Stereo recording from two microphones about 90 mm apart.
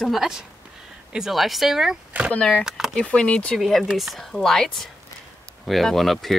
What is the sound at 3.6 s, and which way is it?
Speech, centre (ahead or behind).